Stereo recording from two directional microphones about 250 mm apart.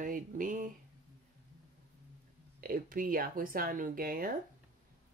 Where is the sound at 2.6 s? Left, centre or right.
Right.